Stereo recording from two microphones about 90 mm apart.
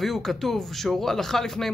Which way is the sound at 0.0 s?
Centre (ahead or behind).